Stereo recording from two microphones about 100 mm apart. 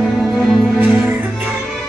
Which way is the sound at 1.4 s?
5° right (ahead or behind).